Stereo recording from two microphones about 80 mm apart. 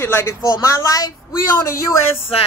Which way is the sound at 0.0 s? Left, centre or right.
Left.